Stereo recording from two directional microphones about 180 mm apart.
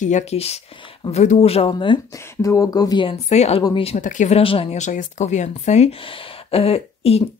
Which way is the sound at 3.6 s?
30° left (ahead or behind).